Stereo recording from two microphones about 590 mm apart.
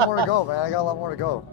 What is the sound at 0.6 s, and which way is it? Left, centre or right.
Speech, left.